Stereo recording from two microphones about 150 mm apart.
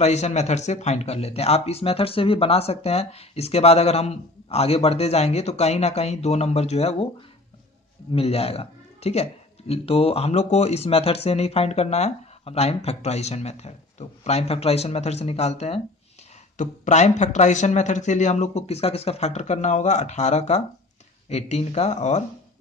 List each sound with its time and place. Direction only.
0.0 s speech: 50° left (ahead or behind)
8.1 s speech: 40° left (ahead or behind)